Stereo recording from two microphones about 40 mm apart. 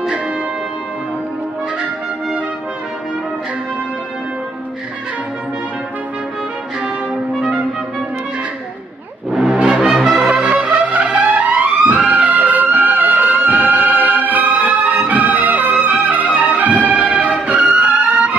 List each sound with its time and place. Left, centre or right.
9.5 s music: right
9.9 s music: centre
10.7 s music: right